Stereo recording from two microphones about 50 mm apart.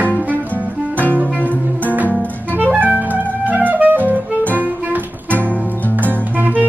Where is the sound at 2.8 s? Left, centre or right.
Right.